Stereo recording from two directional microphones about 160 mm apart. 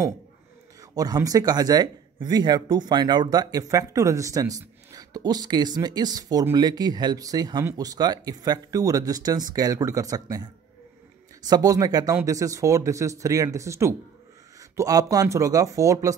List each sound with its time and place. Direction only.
0.7 s speech: 25° right (ahead or behind)